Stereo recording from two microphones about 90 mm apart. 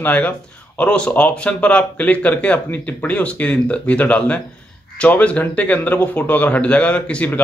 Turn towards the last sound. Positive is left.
turn(degrees=15)  # may be behind; listen again after turning